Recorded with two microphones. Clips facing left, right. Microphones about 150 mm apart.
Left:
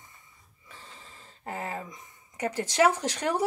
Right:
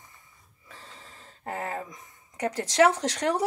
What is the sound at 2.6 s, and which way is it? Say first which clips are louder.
Speech: right 3 dB; 5° left (ahead or behind).